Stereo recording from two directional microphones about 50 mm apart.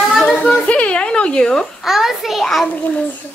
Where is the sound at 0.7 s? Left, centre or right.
Left.